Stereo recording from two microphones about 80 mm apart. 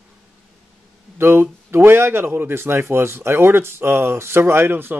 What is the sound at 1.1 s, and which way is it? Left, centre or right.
A man's voice, right.